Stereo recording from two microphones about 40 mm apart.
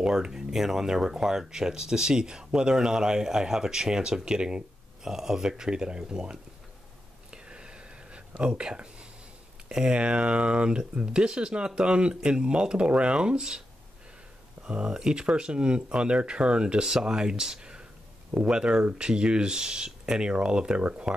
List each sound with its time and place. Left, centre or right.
0.0 s speech: centre
7.2 s whispering: right
8.4 s speech: centre
9.9 s speech: right
14.6 s a sound: right
14.9 s speech: right